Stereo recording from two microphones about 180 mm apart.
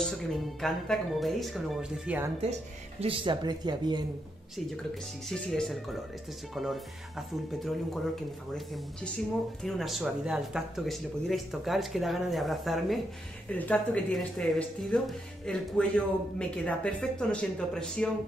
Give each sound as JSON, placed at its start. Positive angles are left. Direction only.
{"t": 0.3, "sound": "speech", "side_deg": 0}
{"t": 3.0, "sound": "speech", "side_deg": -30}
{"t": 5.3, "sound": "speech", "side_deg": 0}